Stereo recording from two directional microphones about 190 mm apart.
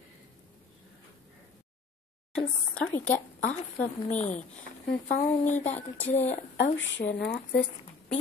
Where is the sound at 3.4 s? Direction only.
35° left (ahead or behind).